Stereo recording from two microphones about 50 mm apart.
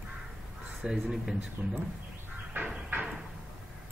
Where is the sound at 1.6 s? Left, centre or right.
Right.